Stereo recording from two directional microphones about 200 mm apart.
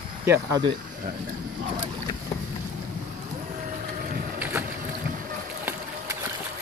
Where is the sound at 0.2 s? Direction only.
15° right (ahead or behind).